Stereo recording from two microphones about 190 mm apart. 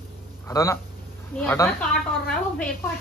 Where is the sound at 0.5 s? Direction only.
15° left (ahead or behind).